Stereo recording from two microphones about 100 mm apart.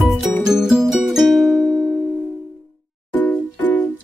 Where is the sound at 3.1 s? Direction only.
15° left (ahead or behind).